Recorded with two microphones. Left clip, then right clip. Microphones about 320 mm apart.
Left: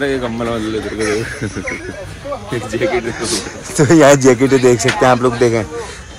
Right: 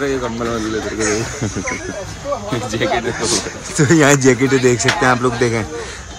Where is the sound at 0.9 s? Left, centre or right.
Centre.